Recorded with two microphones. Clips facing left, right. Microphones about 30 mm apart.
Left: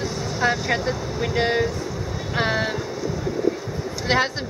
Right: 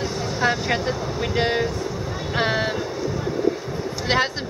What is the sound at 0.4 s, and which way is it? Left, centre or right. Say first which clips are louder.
Speech: even; centre.